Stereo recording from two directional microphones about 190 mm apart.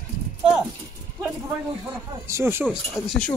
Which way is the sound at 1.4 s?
15° right (ahead or behind).